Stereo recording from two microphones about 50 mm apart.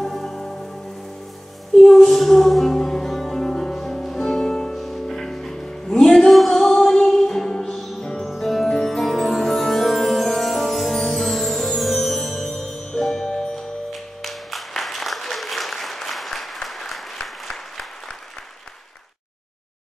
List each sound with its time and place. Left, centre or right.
0.0 s music: centre
1.7 s music: centre
4.7 s music: centre